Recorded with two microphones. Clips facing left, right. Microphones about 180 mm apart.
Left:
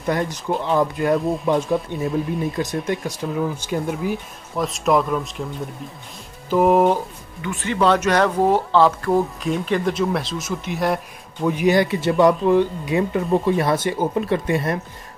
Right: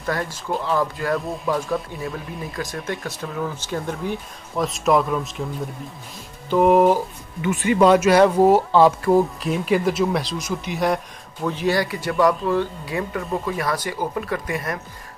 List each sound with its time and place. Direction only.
0.0 s speech: 20° left (ahead or behind); by 5.4 s centre (ahead or behind)
6.5 s speech: centre (ahead or behind)
7.4 s speech: 10° right (ahead or behind)
11.4 s speech: 15° left (ahead or behind)